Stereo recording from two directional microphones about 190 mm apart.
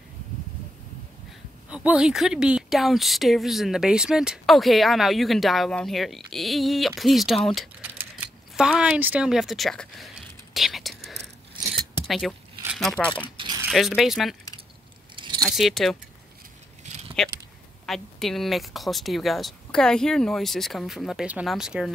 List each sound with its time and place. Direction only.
1.7 s speech: 5° right (ahead or behind)
8.5 s speech: 5° right (ahead or behind)
10.5 s whispering: centre (ahead or behind)
12.1 s speech: centre (ahead or behind)
15.1 s keys jangling: 25° right (ahead or behind)
15.4 s speech: centre (ahead or behind)
16.8 s a sound: 35° right (ahead or behind)
17.8 s speech: centre (ahead or behind)